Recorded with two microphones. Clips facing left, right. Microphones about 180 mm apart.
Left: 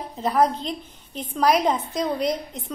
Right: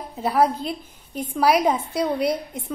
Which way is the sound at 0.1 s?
10° right (ahead or behind).